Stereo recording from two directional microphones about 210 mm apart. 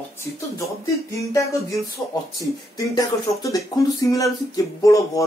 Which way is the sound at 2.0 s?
20° left (ahead or behind).